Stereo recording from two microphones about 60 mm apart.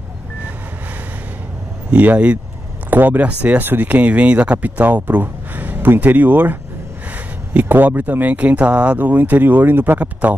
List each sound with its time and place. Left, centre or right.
1.9 s speech: right